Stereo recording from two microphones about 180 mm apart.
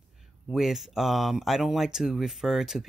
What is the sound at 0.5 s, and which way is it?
Speech, centre (ahead or behind).